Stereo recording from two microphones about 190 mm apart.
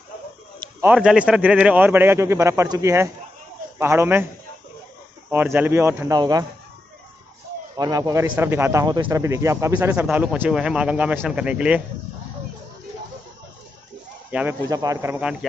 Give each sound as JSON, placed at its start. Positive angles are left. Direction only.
{"t": 0.6, "sound": "a sound", "side_deg": -15}
{"t": 0.9, "sound": "speech", "side_deg": -5}
{"t": 5.3, "sound": "speech", "side_deg": -10}
{"t": 7.7, "sound": "speech", "side_deg": -20}
{"t": 14.3, "sound": "speech", "side_deg": -10}